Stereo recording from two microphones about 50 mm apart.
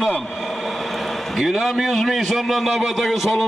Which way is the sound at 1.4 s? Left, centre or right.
Centre.